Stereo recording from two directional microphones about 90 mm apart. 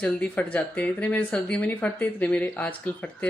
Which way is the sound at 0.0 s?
15° left (ahead or behind).